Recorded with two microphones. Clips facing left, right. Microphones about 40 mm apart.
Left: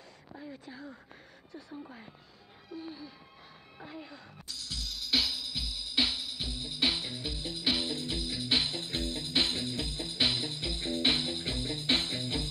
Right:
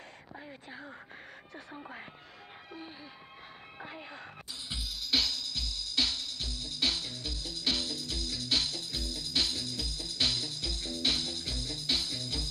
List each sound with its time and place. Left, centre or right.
0.3 s a sound: right
1.8 s speech: right
2.7 s music: right
3.8 s speech: right
4.5 s music: right
4.8 s music: centre; by 12.4 s left